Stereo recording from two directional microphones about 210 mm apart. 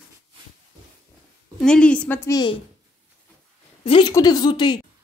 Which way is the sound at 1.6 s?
5° left (ahead or behind).